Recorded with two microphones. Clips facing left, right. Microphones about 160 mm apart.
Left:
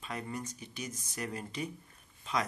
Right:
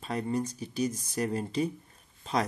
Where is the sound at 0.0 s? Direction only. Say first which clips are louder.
Right 9 dB; 35° right (ahead or behind).